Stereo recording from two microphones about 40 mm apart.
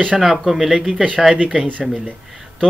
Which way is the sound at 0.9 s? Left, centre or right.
Right.